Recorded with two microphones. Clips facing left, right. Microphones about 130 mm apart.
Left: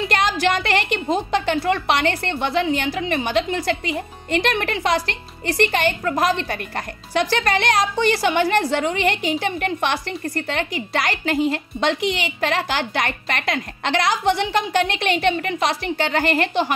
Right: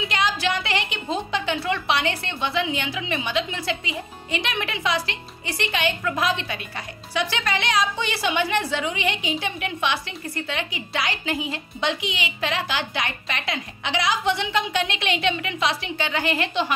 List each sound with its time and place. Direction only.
0.1 s a woman's voice: 55° left (ahead or behind)